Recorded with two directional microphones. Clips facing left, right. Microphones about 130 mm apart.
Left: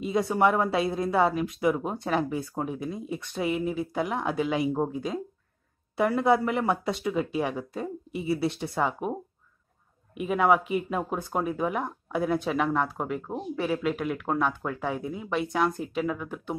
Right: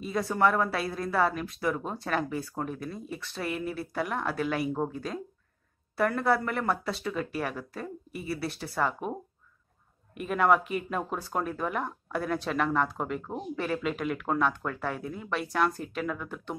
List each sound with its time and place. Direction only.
0.0 s speech: 20° left (ahead or behind)